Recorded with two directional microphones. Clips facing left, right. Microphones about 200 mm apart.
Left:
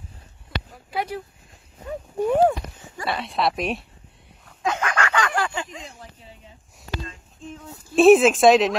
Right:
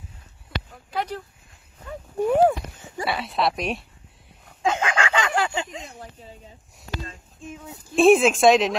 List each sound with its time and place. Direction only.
0.7 s a sound: 10° left (ahead or behind)
2.1 s speech: centre (ahead or behind)
4.6 s fowl: 25° right (ahead or behind)
7.4 s speech: 10° right (ahead or behind)